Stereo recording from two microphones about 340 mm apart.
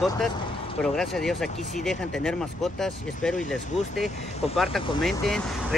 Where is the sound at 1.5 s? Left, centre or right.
Left.